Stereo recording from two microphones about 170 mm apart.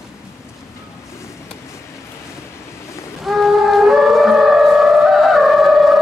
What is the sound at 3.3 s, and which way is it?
Music, centre (ahead or behind).